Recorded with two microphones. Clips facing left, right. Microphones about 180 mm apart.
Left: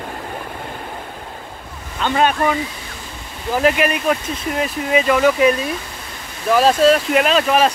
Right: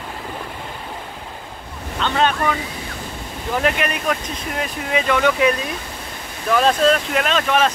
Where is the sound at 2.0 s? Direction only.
10° left (ahead or behind).